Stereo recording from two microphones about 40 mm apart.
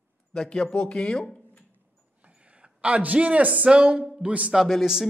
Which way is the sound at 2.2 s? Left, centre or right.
Right.